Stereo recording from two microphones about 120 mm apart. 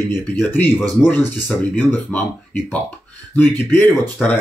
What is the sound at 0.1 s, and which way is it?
Speech, 15° left (ahead or behind).